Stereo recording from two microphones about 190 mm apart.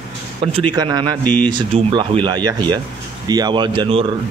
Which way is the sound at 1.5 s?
25° right (ahead or behind).